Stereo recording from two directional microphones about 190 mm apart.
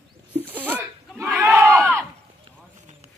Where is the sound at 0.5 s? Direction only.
10° right (ahead or behind).